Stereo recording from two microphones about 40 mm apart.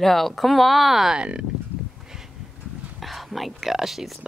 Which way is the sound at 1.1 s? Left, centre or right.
Right.